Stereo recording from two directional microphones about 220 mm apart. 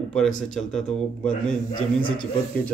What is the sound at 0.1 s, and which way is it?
Speech, 5° left (ahead or behind).